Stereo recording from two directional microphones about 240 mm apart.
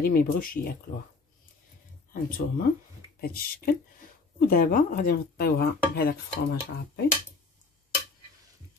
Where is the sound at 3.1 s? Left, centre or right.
Left.